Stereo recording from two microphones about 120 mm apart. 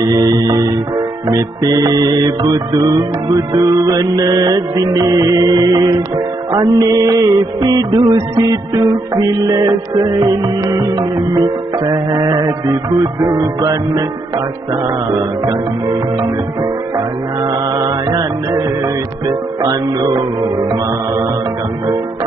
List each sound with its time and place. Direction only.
0.0 s music: 30° right (ahead or behind)